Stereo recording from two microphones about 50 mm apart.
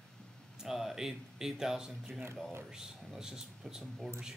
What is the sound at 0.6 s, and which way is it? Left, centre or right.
Speech, centre.